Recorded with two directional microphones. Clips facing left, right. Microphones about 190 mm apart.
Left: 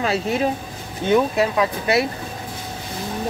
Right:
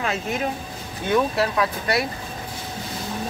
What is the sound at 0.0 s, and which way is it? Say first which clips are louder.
Speech: left 5 dB; 35° left (ahead or behind).